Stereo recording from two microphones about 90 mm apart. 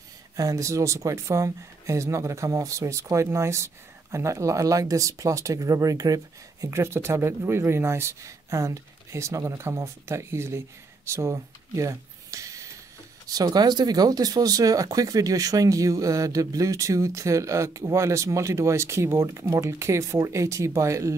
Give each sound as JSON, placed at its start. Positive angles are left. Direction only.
{"t": 0.4, "sound": "speech", "side_deg": -40}